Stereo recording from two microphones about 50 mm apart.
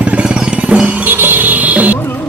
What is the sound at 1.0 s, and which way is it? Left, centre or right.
Music, right.